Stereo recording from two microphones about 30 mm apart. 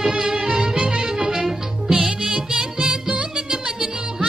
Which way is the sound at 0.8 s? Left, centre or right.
Right.